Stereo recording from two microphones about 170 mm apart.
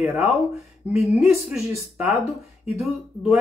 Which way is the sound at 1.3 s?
10° right (ahead or behind).